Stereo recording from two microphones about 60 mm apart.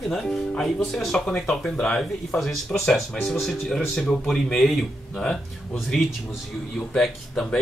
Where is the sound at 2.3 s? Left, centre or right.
Left.